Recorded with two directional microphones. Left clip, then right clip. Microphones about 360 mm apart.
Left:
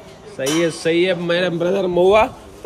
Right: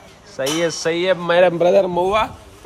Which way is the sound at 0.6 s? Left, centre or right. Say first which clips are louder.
Left 2 dB; centre.